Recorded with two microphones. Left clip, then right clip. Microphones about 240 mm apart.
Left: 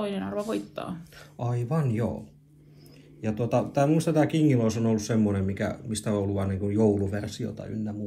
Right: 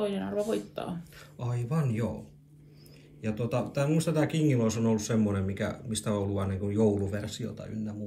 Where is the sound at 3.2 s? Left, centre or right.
Centre.